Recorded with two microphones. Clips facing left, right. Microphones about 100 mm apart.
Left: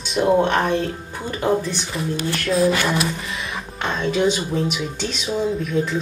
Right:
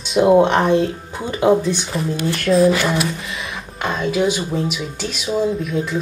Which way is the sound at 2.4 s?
Centre (ahead or behind).